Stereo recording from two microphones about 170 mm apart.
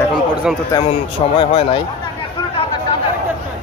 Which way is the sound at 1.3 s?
35° left (ahead or behind).